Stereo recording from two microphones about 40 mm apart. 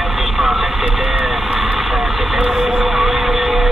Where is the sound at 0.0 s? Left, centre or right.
Centre.